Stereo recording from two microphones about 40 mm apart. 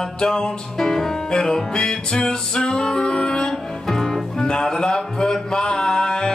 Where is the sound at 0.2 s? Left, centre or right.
Centre.